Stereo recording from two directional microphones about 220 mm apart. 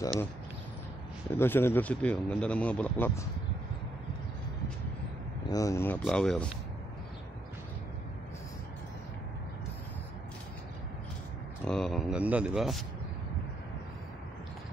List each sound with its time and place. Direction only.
0.0 s a sound: 15° left (ahead or behind)
1.3 s speech: 10° left (ahead or behind)
5.5 s speech: 15° left (ahead or behind)
11.6 s a man's voice: 5° left (ahead or behind)